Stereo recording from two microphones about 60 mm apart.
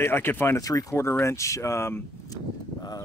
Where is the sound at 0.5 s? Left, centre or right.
Left.